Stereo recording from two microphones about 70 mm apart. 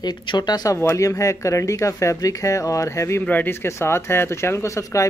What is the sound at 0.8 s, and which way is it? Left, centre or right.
Speech, left.